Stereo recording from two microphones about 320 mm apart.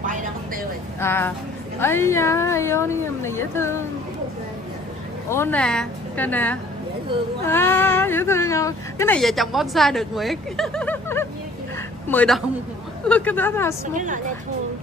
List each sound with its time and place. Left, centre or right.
0.0 s vehicle: right
1.0 s speech: centre
5.3 s a woman's voice: centre
13.9 s a woman's voice: right